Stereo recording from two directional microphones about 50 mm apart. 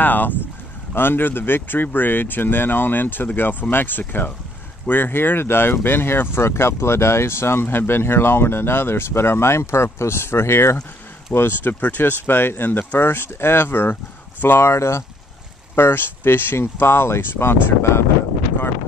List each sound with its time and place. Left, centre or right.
0.0 s speech: left
6.3 s speech: left
11.3 s speech: left
11.8 s speech: left
15.7 s speech: left